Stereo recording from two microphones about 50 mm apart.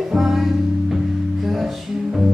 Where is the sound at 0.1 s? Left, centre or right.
Centre.